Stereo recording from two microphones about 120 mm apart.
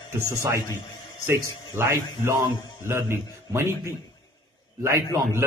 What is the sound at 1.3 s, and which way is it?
A man's voice, 25° right (ahead or behind).